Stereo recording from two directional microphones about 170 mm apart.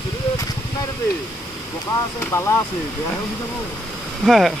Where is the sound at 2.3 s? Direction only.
15° left (ahead or behind).